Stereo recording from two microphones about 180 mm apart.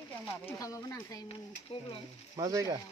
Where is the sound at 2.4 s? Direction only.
20° right (ahead or behind).